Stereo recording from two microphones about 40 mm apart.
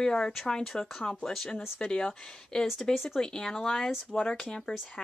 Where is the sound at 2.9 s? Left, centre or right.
Centre.